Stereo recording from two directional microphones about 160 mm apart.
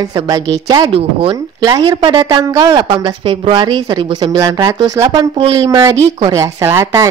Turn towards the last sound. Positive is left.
turn(degrees=-15)  # may be behind; listen again after turning